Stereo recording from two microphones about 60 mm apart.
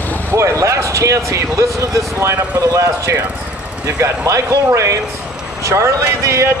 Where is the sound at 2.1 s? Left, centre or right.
Right.